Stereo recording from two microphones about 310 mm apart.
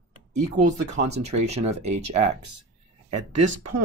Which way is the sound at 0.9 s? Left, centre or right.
Right.